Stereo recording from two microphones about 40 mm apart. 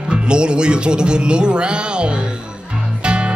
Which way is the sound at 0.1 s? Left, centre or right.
Right.